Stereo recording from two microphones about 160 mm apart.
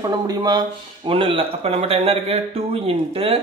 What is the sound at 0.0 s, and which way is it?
Speech, 25° right (ahead or behind).